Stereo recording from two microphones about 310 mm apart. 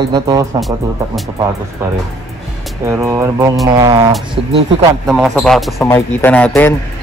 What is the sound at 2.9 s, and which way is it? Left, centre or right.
Speech, centre.